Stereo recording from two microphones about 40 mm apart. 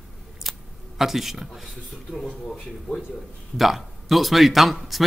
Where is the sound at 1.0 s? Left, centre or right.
Centre.